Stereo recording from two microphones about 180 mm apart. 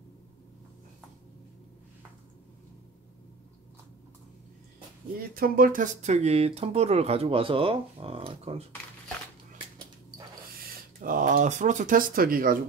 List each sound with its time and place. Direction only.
4.7 s speech: 55° right (ahead or behind); by 8.6 s 30° right (ahead or behind)
10.5 s speech: 55° right (ahead or behind)